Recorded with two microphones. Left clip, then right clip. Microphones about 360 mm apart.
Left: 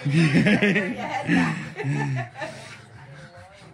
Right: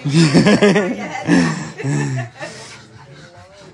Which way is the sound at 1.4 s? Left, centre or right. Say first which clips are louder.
Right 6 dB; right.